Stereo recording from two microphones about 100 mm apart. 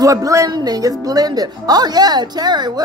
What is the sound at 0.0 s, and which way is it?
A woman's voice, 35° right (ahead or behind).